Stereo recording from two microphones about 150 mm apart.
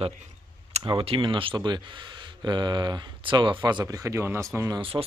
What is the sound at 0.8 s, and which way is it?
Speech, 35° right (ahead or behind).